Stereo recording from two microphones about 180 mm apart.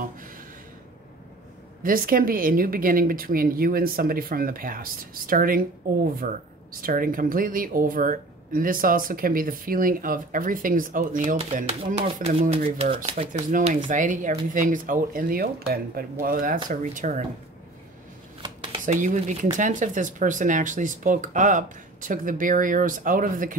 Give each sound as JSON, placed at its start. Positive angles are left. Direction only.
{"t": 1.8, "sound": "speech", "side_deg": -50}
{"t": 13.1, "sound": "speech", "side_deg": -45}
{"t": 18.9, "sound": "speech", "side_deg": -45}